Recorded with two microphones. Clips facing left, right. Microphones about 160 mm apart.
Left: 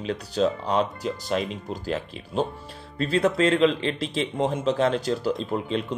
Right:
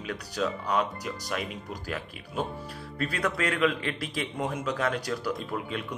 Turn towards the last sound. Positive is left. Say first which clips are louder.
# left 6 dB
turn(degrees=25)  # may be behind; listen again after turning